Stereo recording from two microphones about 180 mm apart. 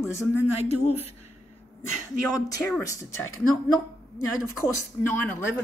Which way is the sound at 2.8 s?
15° left (ahead or behind).